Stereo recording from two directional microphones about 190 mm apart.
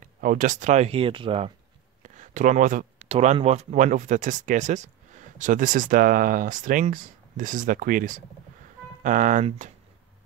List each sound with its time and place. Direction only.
0.0 s speech: 45° right (ahead or behind)
2.0 s a sound: 40° right (ahead or behind)
3.1 s speech: 30° right (ahead or behind)